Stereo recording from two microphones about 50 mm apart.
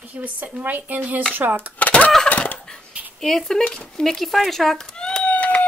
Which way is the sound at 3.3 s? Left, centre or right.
Centre.